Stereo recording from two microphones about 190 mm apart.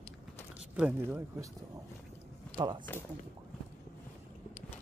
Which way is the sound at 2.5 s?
25° right (ahead or behind).